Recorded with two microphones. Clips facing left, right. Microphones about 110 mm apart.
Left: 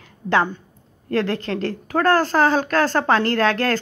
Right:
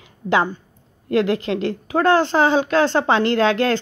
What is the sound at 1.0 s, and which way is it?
Speech, 15° right (ahead or behind).